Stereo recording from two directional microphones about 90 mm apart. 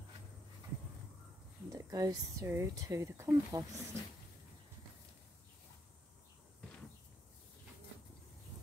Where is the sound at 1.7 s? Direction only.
45° right (ahead or behind).